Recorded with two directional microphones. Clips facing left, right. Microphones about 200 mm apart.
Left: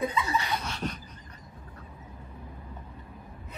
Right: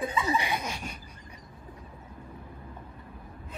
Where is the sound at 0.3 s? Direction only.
15° right (ahead or behind).